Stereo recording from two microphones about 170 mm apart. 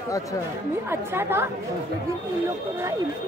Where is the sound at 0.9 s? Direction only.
15° right (ahead or behind).